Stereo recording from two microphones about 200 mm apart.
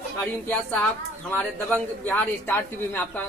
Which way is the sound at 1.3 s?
10° left (ahead or behind).